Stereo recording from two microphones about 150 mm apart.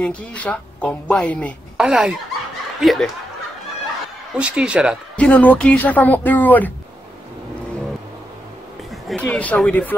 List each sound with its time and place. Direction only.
0.0 s speech: 10° left (ahead or behind)
1.8 s speech: 5° right (ahead or behind)
4.4 s speech: 5° right (ahead or behind)
5.1 s speech: 10° left (ahead or behind)
9.0 s speech: 5° left (ahead or behind)